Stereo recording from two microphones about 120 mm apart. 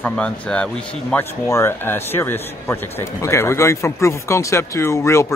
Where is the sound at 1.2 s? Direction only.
20° left (ahead or behind).